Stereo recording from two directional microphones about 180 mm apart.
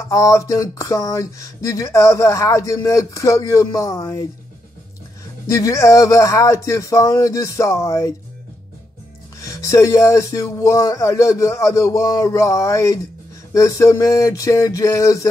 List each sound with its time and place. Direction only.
0.0 s speech: 15° left (ahead or behind)
5.5 s speech: 20° left (ahead or behind)
9.4 s speech: 20° left (ahead or behind)